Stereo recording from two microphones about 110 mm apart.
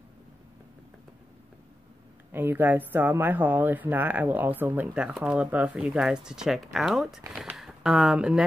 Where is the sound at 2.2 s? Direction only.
20° right (ahead or behind).